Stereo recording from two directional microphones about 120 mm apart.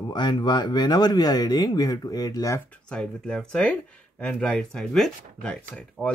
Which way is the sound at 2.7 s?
5° left (ahead or behind).